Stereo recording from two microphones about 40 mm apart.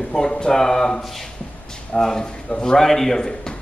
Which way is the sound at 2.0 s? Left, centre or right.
Centre.